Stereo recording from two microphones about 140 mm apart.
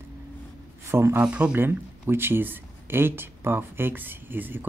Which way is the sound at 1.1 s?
10° right (ahead or behind).